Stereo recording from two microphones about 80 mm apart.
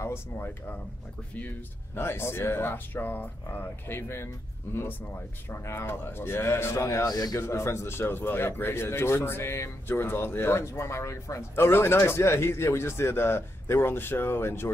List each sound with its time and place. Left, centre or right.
0.0 s speech: left
2.0 s speech: left
5.5 s a man's voice: left
7.1 s a man's voice: left
7.3 s a man's voice: left